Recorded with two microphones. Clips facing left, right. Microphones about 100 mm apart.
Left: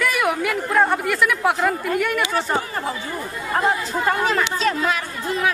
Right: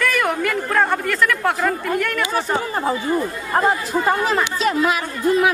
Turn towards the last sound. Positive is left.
turn(degrees=-10)  # may be behind; listen again after turning